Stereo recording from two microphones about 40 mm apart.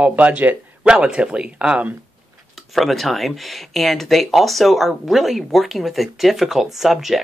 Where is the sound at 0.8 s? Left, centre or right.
Right.